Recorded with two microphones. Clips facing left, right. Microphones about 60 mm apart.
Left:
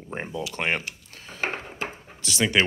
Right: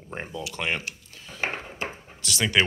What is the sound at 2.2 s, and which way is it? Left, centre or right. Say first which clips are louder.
Speech: left 2 dB; centre.